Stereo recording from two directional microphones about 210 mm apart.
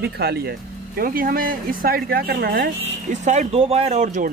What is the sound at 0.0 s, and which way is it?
Speech, 50° right (ahead or behind).